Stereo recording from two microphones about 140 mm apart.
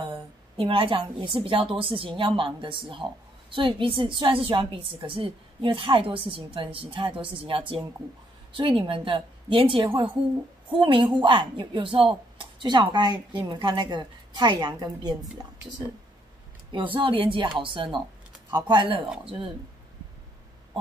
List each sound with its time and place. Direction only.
0.0 s a woman's voice: 40° right (ahead or behind)
16.7 s a woman's voice: 40° right (ahead or behind)